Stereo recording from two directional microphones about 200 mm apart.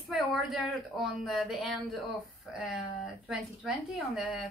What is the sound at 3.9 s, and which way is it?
Speech, centre (ahead or behind).